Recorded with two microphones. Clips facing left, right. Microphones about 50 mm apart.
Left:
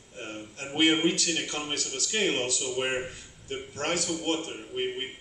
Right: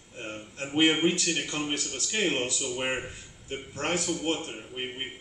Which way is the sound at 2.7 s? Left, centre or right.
Centre.